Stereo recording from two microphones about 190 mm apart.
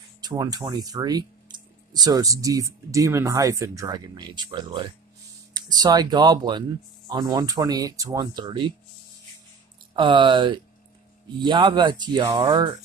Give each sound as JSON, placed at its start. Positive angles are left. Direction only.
{"t": 0.2, "sound": "speech", "side_deg": -20}
{"t": 9.9, "sound": "speech", "side_deg": -25}